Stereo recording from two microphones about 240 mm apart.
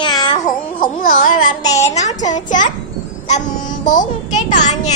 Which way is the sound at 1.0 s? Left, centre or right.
Left.